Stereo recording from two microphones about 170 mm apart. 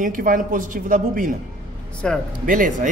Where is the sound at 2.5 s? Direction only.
50° right (ahead or behind).